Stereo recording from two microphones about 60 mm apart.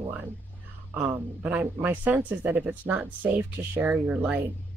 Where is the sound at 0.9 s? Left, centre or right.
Right.